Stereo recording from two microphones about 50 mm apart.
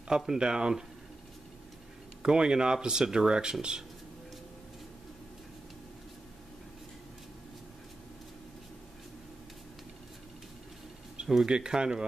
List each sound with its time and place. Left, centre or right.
0.3 s speech: centre
2.2 s speech: centre
11.2 s speech: centre